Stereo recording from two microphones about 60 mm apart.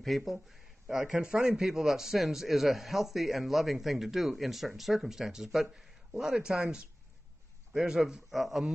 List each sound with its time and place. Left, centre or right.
0.0 s speech: centre
1.6 s a man's voice: centre